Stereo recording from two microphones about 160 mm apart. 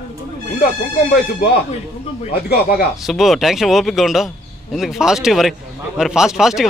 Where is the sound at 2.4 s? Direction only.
85° left.